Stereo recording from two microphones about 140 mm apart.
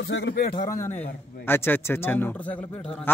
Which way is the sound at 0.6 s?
20° left (ahead or behind).